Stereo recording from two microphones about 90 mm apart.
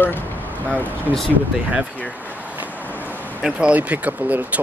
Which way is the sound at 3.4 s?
15° right (ahead or behind).